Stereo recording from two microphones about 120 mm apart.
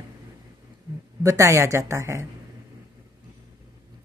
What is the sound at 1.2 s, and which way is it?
Speech, 25° right (ahead or behind).